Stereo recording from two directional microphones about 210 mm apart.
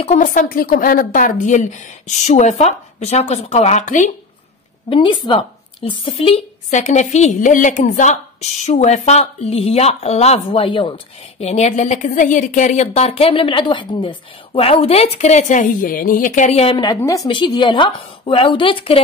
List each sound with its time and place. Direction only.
0.0 s speech: 35° left (ahead or behind)
4.8 s speech: 25° left (ahead or behind)
16.7 s a woman's voice: 20° left (ahead or behind)